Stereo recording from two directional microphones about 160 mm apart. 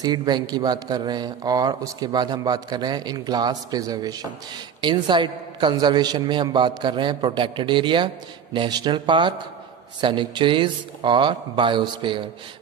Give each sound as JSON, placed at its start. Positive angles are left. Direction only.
{"t": 0.0, "sound": "speech", "side_deg": -25}